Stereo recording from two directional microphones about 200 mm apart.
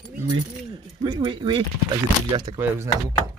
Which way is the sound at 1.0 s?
25° right (ahead or behind).